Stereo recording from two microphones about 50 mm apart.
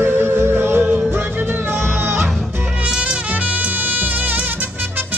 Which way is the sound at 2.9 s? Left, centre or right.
Centre.